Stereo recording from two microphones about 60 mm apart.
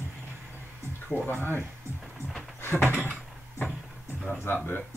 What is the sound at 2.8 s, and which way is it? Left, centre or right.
Speech, left.